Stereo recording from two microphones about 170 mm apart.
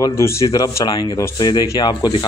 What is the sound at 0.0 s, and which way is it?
Speech, 15° left (ahead or behind).